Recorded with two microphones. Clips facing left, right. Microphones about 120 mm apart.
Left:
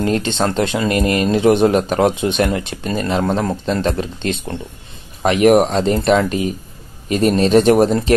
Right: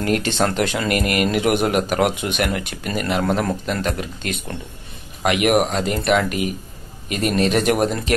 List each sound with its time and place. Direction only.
0.0 s speech: 25° left (ahead or behind)